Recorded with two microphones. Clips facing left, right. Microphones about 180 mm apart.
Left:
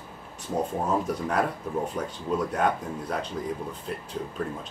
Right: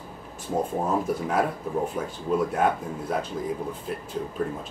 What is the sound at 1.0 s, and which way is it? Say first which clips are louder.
Speech: right 2 dB; 5° right (ahead or behind).